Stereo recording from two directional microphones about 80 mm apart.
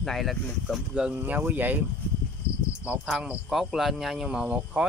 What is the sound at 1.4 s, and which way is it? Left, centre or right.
Speech, right.